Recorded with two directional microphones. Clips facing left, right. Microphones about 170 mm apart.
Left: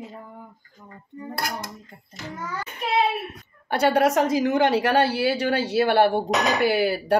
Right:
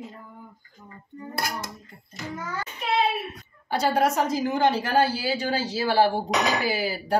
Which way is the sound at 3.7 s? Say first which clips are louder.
Left 3 dB; 65° left (ahead or behind).